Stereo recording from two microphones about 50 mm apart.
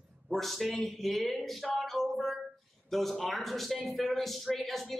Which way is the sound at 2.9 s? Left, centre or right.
Centre.